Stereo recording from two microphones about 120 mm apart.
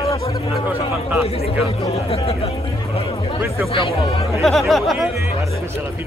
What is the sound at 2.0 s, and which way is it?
Speech, 55° left (ahead or behind).